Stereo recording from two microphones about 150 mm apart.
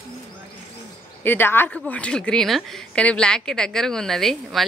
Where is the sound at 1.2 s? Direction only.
15° left (ahead or behind).